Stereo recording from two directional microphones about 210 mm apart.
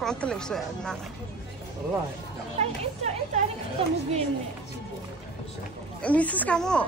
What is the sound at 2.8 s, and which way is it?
A woman's voice, 30° right (ahead or behind).